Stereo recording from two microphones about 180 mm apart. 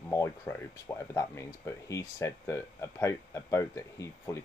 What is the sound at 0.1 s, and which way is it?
Speech, 15° left (ahead or behind).